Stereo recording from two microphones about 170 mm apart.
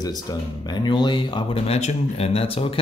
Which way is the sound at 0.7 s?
25° left (ahead or behind).